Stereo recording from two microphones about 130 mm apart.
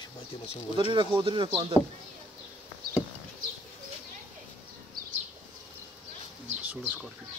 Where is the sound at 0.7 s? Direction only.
35° right (ahead or behind).